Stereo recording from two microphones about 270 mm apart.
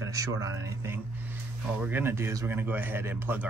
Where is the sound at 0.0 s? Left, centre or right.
Centre.